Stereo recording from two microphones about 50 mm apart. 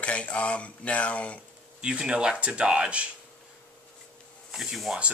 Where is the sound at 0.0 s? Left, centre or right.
Left.